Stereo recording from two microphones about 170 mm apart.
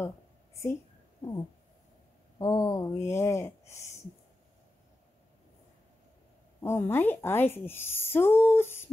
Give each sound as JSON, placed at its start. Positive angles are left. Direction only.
{"t": 2.3, "sound": "speech", "side_deg": 20}
{"t": 6.6, "sound": "speech", "side_deg": 15}